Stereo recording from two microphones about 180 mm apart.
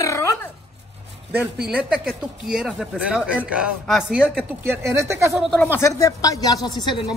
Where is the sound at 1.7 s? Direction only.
5° right (ahead or behind).